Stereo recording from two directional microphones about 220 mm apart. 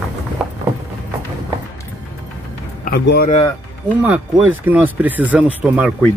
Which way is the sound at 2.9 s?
45° left (ahead or behind).